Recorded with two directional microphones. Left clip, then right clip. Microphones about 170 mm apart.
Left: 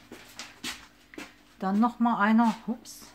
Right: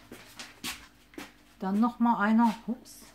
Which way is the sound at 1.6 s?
25° left (ahead or behind).